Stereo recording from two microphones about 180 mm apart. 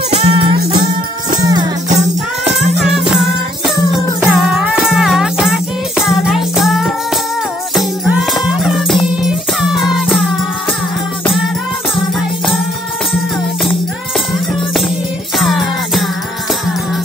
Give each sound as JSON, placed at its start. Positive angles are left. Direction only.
{"t": 0.1, "sound": "music", "side_deg": -30}
{"t": 0.6, "sound": "music", "side_deg": -60}
{"t": 1.4, "sound": "music", "side_deg": -20}
{"t": 2.6, "sound": "music", "side_deg": 0}
{"t": 4.4, "sound": "music", "side_deg": -5}
{"t": 15.3, "sound": "music", "side_deg": 0}